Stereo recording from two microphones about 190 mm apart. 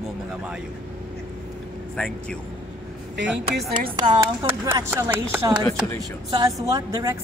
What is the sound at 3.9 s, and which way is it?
A woman's voice, 25° right (ahead or behind).